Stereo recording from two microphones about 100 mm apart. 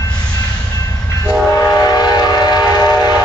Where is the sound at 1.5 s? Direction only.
35° left (ahead or behind).